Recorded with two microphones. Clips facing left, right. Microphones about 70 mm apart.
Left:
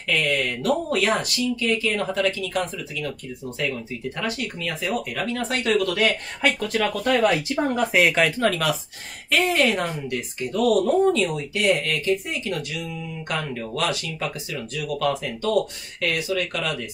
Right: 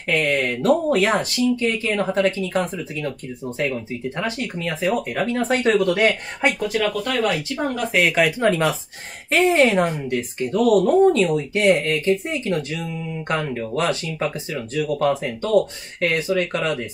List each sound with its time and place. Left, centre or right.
0.0 s speech: right
6.6 s speech: centre
8.4 s speech: right